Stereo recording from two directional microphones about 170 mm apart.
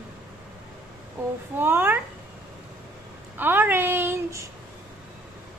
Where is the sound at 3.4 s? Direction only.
10° right (ahead or behind).